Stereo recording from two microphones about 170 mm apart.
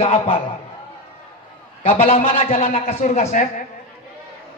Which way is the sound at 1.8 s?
35° left (ahead or behind).